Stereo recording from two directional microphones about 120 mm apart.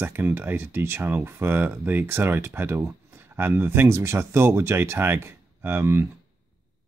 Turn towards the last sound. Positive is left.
turn(degrees=-20)  # may be behind; listen again after turning